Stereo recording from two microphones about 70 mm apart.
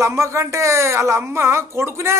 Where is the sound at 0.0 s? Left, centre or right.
Right.